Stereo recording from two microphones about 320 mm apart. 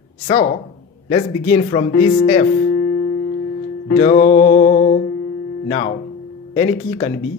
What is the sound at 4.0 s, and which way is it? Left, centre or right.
Music, centre.